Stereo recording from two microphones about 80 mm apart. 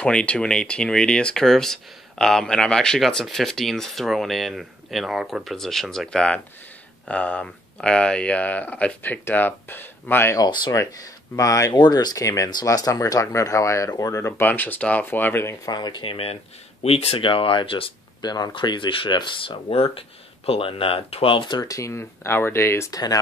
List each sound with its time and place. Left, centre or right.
0.0 s speech: centre
10.3 s speech: left
11.3 s speech: left
11.7 s speech: left
15.6 s speech: left
17.2 s speech: left
18.2 s speech: left
21.3 s speech: left
21.6 s speech: left